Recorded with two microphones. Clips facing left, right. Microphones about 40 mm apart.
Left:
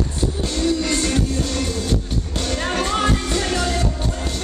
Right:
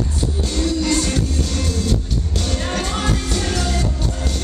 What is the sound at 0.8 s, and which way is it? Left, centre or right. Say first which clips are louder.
Music: right 1 dB; centre.